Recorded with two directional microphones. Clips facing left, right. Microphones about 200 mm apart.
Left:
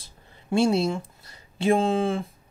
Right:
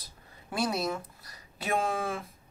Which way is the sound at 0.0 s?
25° left (ahead or behind).